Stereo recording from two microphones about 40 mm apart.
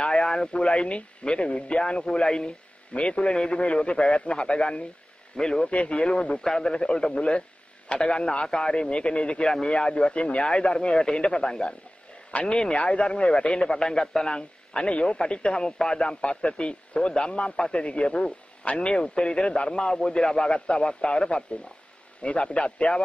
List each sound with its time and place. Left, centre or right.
0.0 s a man's voice: left
2.9 s a man's voice: left
5.7 s speech: left
6.4 s a man's voice: centre